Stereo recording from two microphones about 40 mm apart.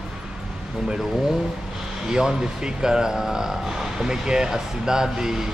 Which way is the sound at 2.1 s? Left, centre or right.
Centre.